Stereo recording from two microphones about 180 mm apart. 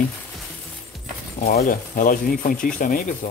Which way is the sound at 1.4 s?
55° left (ahead or behind).